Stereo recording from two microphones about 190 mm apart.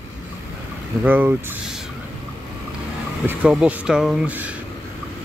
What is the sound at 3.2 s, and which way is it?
Speech, 5° right (ahead or behind).